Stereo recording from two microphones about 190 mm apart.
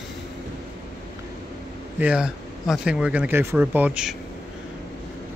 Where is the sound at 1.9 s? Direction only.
5° right (ahead or behind).